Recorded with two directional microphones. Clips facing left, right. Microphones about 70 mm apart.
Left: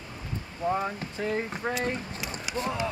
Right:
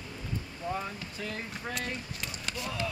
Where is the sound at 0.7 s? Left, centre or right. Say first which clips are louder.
Left 7 dB; left.